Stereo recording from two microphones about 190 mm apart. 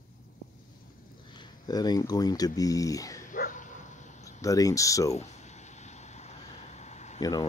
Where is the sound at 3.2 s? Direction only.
45° left (ahead or behind).